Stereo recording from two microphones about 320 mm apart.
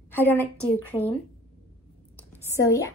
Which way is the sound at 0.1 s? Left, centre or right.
Centre.